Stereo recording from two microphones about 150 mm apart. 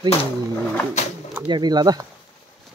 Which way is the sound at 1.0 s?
50° left (ahead or behind).